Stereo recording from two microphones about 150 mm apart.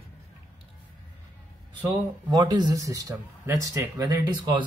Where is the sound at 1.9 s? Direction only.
25° right (ahead or behind).